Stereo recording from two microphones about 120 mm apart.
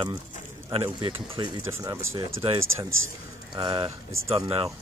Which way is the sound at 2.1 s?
35° right (ahead or behind).